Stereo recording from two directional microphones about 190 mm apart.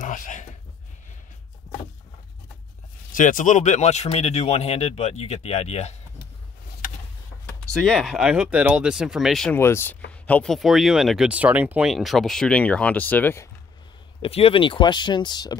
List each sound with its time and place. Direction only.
0.0 s a sound: 40° left (ahead or behind)
3.1 s speech: 45° left (ahead or behind)
7.7 s speech: centre (ahead or behind)
9.6 s speech: 15° left (ahead or behind)
14.2 s speech: 30° left (ahead or behind)